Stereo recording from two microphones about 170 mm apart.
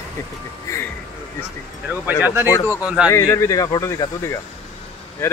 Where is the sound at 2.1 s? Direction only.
10° right (ahead or behind).